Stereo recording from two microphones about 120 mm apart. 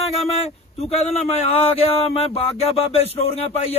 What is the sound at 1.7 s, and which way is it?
Speech, 55° left (ahead or behind).